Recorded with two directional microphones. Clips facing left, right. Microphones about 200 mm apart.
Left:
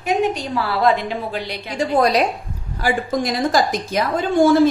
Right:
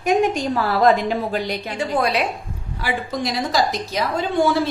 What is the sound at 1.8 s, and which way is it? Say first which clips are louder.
Speech: left 5 dB; 40° left (ahead or behind).